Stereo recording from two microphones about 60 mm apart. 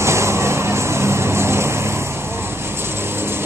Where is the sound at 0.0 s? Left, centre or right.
Right.